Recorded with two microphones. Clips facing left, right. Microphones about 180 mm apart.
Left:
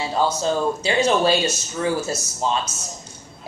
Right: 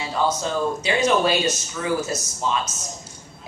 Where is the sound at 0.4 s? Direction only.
30° left (ahead or behind).